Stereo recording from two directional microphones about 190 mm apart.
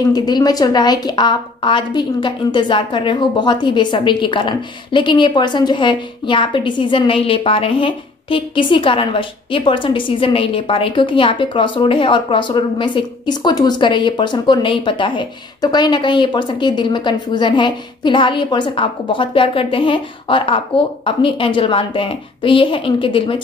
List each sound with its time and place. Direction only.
0.1 s a woman's voice: 20° left (ahead or behind)